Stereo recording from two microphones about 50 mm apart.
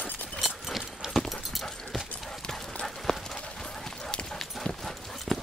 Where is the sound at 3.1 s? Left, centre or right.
Centre.